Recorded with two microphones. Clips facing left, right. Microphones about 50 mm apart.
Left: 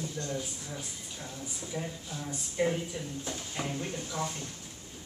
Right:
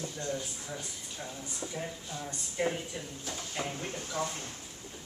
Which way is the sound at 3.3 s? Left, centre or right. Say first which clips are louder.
Right 1 dB; centre.